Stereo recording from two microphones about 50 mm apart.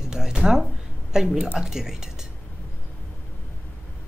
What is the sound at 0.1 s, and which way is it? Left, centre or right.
Speech, centre.